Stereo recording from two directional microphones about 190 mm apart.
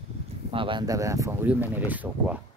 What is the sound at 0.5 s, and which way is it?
Speech, 25° right (ahead or behind).